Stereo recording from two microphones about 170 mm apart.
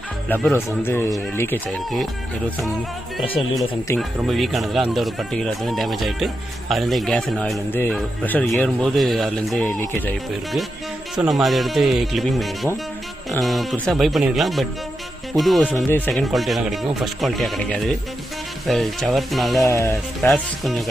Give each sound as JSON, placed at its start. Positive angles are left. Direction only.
{"t": 0.3, "sound": "speech", "side_deg": 10}
{"t": 3.3, "sound": "speech", "side_deg": 0}
{"t": 9.7, "sound": "speech", "side_deg": 10}
{"t": 11.1, "sound": "speech", "side_deg": 0}
{"t": 19.6, "sound": "speech", "side_deg": 15}
{"t": 20.2, "sound": "speech", "side_deg": 0}